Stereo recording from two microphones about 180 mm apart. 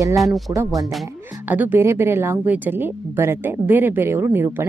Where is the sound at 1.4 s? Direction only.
10° right (ahead or behind).